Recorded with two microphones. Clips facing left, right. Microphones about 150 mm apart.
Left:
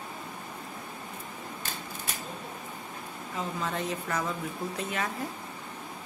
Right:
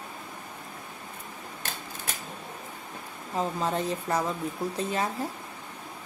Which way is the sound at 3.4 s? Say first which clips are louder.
Right 5 dB; 35° right (ahead or behind).